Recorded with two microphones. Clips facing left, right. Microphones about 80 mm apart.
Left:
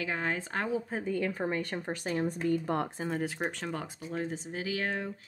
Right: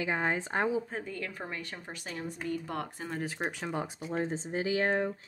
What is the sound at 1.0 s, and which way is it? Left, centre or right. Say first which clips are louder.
Speech: left 8 dB; centre.